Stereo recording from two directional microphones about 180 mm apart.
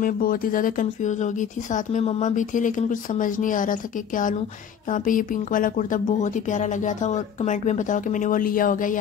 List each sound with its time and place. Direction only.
0.0 s speech: 50° left (ahead or behind)